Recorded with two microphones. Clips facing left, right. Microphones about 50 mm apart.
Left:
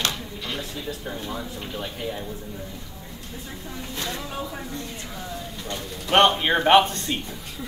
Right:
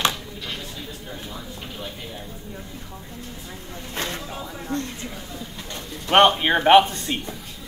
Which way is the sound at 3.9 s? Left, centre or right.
Right.